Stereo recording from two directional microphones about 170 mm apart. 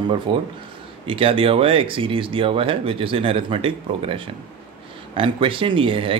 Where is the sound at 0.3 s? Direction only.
30° right (ahead or behind).